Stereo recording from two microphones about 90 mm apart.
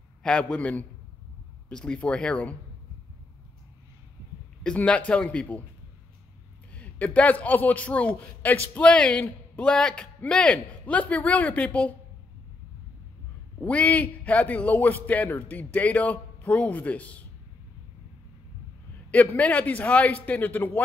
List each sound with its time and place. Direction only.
0.2 s a man's voice: 10° left (ahead or behind)
4.6 s a man's voice: 15° left (ahead or behind)
6.7 s a man's voice: 15° left (ahead or behind)
13.6 s a man's voice: 15° left (ahead or behind)
19.3 s a man's voice: 15° left (ahead or behind)